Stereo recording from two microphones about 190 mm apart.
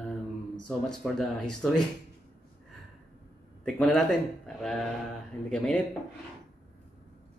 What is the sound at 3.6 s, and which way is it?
Speech, 5° left (ahead or behind).